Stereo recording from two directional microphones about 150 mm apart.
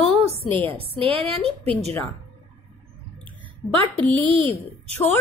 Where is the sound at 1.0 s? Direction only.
40° right (ahead or behind).